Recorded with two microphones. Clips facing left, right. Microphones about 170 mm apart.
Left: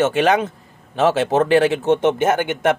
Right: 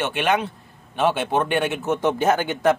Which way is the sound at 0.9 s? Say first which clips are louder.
Left 5 dB; 90° left.